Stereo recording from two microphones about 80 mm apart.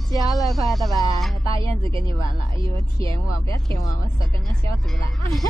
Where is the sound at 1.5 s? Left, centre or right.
Left.